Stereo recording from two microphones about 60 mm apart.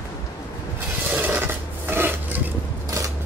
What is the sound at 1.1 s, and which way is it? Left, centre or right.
Filing, right.